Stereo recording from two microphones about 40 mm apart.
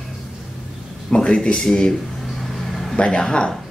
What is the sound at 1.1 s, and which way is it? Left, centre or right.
Speech, left.